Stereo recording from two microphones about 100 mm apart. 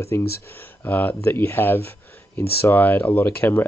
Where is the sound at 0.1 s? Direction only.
30° left (ahead or behind).